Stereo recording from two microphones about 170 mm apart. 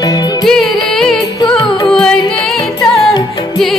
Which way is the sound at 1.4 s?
25° left (ahead or behind).